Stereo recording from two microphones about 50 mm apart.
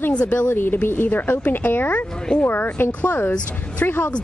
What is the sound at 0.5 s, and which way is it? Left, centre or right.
Speech, left.